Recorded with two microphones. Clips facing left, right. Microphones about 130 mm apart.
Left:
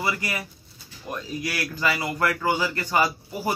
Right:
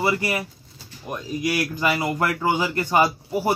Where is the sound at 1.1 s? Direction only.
20° right (ahead or behind).